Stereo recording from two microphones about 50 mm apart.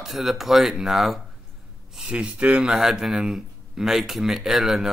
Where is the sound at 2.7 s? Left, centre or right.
Centre.